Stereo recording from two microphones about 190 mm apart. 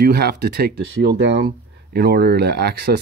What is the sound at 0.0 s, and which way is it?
Speech, 55° right (ahead or behind).